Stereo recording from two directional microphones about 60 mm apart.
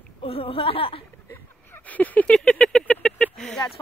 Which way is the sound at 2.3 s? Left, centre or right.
Centre.